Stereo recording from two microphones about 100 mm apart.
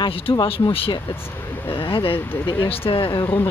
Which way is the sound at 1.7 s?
60° left (ahead or behind).